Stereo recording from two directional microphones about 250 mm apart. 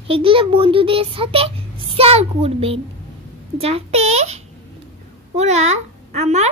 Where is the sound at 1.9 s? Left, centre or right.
Right.